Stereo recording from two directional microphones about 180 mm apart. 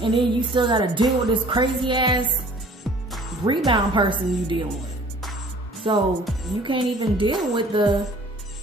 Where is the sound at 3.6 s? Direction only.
25° right (ahead or behind).